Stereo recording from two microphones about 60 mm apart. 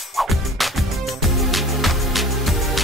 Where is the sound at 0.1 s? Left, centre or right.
Centre.